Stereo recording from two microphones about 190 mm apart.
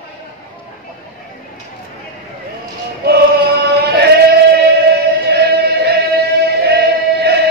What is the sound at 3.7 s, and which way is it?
Singing, 60° right (ahead or behind).